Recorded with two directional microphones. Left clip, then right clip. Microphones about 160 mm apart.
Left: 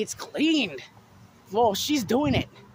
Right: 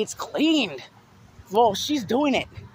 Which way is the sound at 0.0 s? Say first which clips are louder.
Right 3 dB; 10° right (ahead or behind).